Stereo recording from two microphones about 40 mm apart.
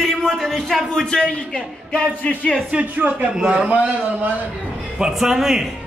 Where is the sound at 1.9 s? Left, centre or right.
Left.